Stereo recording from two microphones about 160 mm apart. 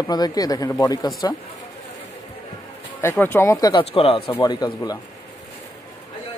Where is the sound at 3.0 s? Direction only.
15° left (ahead or behind).